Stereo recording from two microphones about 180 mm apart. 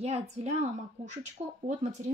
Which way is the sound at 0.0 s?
35° right (ahead or behind).